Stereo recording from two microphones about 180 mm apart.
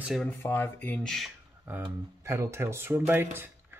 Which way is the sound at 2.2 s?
15° right (ahead or behind).